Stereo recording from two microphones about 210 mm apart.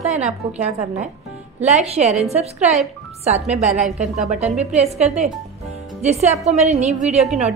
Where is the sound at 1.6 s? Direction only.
30° right (ahead or behind).